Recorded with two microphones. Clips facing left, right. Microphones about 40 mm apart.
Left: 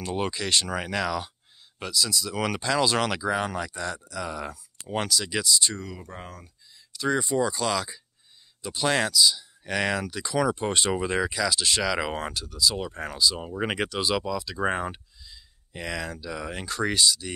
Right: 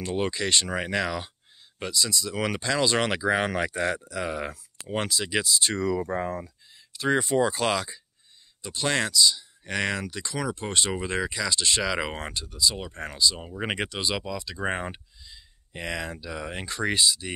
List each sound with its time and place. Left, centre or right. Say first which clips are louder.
0.0 s speech: right 1 dB; centre
3.0 s speech: right 2 dB; centre
3.3 s speech: right 3 dB; right
4.8 s speech: left 1 dB; centre
6.9 s a sound: right 1 dB; right
7.2 s speech: right 3 dB; right
8.6 s speech: left 2 dB; centre